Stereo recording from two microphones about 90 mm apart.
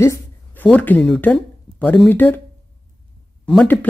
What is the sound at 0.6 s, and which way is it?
Speech, 20° left (ahead or behind).